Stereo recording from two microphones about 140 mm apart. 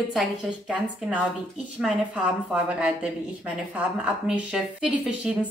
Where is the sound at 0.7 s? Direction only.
5° right (ahead or behind).